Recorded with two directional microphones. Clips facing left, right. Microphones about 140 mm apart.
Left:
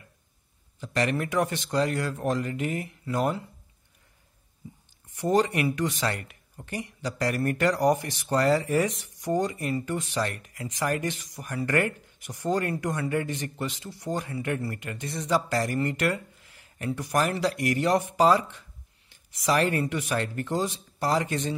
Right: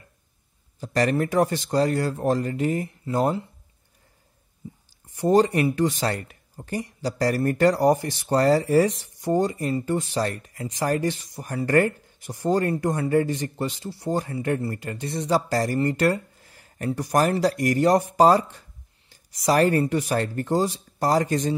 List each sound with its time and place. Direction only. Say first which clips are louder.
0.7 s speech: right 5 dB; 40° right (ahead or behind)
5.1 s speech: right 5 dB; 30° right (ahead or behind)